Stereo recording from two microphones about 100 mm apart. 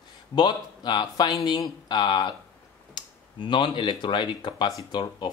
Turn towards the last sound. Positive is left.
turn(degrees=50)  # may be behind; listen again after turning